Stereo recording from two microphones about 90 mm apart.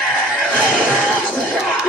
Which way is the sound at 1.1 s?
15° left (ahead or behind).